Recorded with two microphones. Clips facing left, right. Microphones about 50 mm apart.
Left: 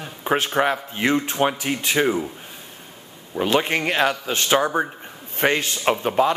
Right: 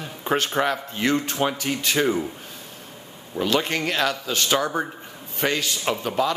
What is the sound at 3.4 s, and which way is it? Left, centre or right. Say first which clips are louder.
A man's voice: left 2 dB; left.